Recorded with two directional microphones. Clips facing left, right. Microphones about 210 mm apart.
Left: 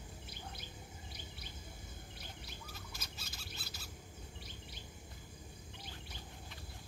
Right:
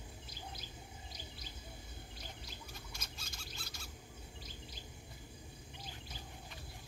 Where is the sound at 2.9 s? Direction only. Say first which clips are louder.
Even; 5° left (ahead or behind).